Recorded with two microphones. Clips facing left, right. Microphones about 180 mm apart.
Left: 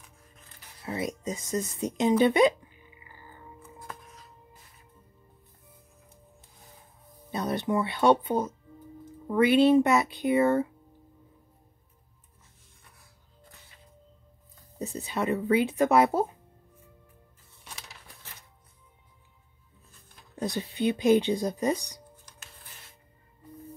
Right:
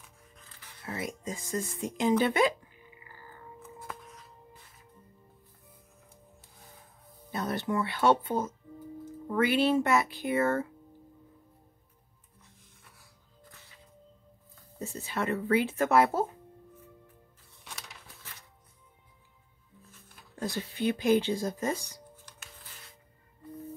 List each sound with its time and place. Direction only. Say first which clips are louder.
0.8 s speech: left 4 dB; 20° left (ahead or behind)
7.2 s speech: left 3 dB; 20° left (ahead or behind)
14.8 s speech: left 3 dB; 20° left (ahead or behind)
20.3 s speech: left 3 dB; 20° left (ahead or behind)